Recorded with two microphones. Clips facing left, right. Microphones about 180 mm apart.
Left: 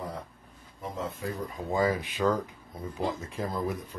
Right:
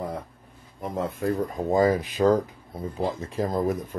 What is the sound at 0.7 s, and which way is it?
Speech, 55° right (ahead or behind).